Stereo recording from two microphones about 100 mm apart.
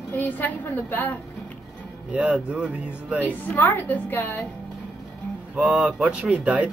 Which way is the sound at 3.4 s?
20° left (ahead or behind).